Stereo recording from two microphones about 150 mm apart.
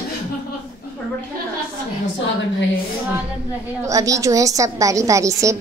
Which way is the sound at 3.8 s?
20° right (ahead or behind).